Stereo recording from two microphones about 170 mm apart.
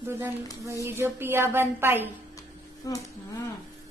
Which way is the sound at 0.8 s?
15° right (ahead or behind).